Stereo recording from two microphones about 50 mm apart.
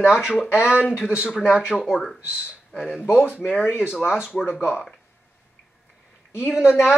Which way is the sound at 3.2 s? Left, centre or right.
Centre.